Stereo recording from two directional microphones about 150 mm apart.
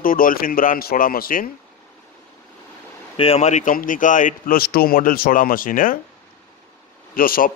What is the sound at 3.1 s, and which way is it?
A man's voice, 40° left (ahead or behind).